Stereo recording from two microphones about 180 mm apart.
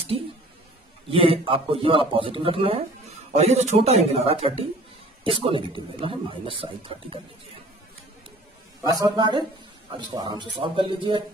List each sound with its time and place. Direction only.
1.1 s speech: 30° right (ahead or behind)
8.8 s speech: 20° right (ahead or behind)